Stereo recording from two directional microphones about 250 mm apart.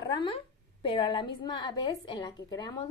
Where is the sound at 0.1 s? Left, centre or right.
Centre.